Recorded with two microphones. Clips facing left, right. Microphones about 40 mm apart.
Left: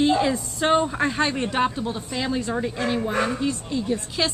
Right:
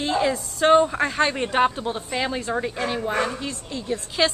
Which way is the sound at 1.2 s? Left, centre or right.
Centre.